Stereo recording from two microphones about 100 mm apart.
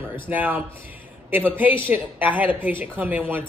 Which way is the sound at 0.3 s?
15° right (ahead or behind).